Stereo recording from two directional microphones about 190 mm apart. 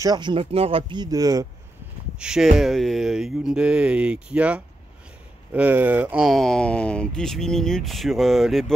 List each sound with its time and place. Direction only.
0.0 s speech: 20° right (ahead or behind)
2.1 s speech: 5° right (ahead or behind)